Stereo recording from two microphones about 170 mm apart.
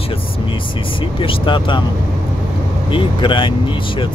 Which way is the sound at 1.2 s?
30° left (ahead or behind).